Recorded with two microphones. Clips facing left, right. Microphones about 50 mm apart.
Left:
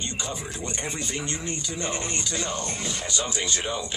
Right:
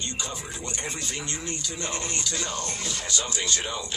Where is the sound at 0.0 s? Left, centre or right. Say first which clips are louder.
Left 2 dB; left.